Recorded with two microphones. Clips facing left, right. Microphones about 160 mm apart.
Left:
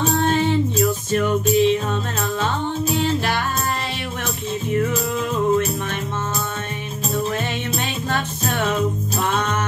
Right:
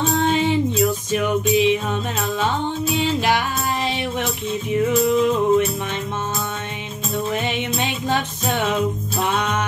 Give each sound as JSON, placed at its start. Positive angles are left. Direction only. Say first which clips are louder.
{"t": 0.1, "sound": "music", "louder": "right 1 dB", "side_deg": -15}
{"t": 4.7, "sound": "music", "louder": "right 3 dB", "side_deg": -15}
{"t": 7.4, "sound": "music", "louder": "right 2 dB", "side_deg": -15}